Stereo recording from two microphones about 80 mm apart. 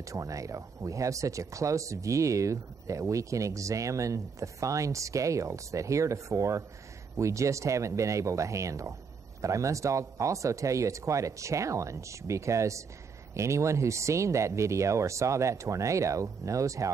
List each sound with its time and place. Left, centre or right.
0.0 s speech: right